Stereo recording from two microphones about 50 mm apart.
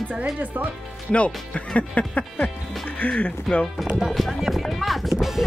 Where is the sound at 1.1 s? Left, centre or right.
Left.